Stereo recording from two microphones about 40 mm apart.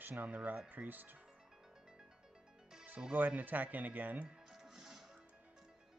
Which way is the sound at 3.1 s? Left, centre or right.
Right.